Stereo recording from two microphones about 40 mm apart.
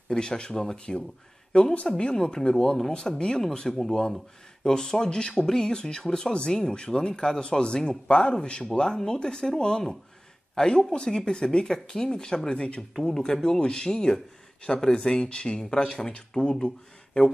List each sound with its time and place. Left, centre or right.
0.1 s speech: centre
1.5 s speech: left